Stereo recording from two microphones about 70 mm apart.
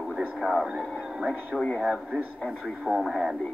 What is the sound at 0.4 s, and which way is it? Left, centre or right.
A woman's voice, centre.